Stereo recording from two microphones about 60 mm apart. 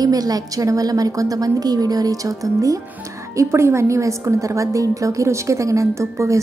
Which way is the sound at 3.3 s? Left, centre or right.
Right.